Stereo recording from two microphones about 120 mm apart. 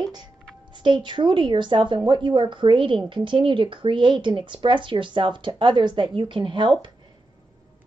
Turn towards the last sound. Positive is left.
turn(degrees=-40)  # may be behind; listen again after turning